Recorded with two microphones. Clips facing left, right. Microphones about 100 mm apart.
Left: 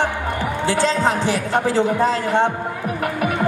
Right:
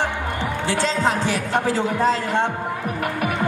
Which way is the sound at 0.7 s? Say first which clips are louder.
Left 3 dB; 20° left (ahead or behind).